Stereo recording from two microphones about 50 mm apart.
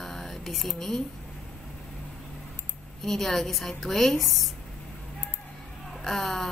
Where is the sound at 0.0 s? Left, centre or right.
Centre.